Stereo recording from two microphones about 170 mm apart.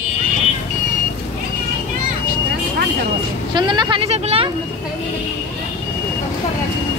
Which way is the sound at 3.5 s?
25° right (ahead or behind).